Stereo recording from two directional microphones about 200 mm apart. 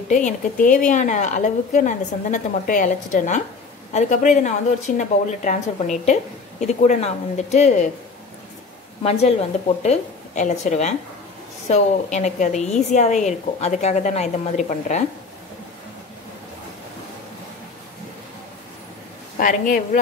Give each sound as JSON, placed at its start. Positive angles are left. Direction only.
{"t": 0.1, "sound": "a woman's voice", "side_deg": 40}
{"t": 9.0, "sound": "a woman's voice", "side_deg": 30}
{"t": 19.4, "sound": "a woman's voice", "side_deg": 40}